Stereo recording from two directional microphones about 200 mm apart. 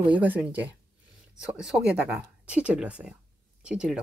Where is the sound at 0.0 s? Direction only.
10° right (ahead or behind).